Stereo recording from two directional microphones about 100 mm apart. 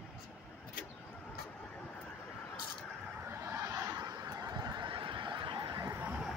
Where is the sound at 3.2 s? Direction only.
25° right (ahead or behind); by 5.8 s 55° right (ahead or behind).